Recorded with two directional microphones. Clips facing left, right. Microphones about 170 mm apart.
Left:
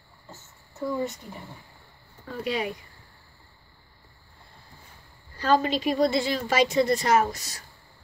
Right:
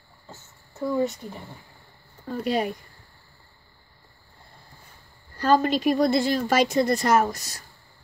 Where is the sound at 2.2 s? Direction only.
45° right (ahead or behind).